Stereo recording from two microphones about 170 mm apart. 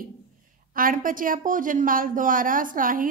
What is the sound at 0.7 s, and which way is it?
A woman's voice, 55° right (ahead or behind).